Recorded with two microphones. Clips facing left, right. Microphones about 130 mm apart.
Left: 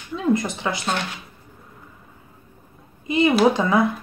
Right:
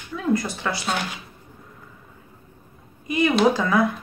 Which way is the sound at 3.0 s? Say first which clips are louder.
Left 3 dB; 25° left (ahead or behind).